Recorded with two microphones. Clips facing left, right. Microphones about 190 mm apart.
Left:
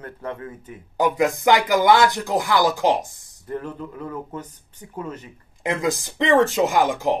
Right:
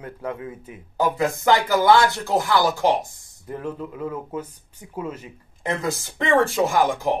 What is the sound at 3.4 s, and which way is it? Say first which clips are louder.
Speech: even; 10° right (ahead or behind).